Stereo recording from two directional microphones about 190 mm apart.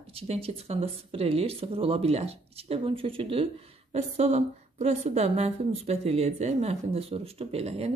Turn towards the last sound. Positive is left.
turn(degrees=-35)  # may be behind; listen again after turning